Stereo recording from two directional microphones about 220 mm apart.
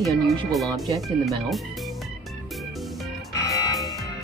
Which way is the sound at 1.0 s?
Centre (ahead or behind).